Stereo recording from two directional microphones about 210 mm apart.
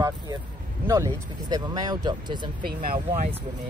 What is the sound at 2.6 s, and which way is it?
Speech, 45° right (ahead or behind).